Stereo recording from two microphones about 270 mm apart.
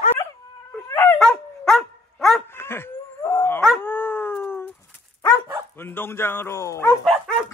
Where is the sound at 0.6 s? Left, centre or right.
Centre.